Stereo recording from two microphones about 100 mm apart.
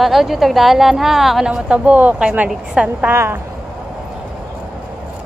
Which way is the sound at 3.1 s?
25° right (ahead or behind).